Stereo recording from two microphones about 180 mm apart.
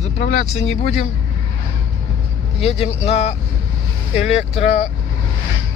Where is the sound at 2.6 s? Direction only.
35° left (ahead or behind).